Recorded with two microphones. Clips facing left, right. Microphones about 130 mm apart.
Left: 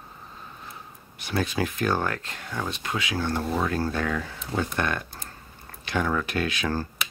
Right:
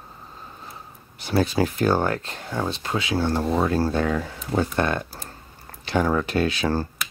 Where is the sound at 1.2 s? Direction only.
30° right (ahead or behind).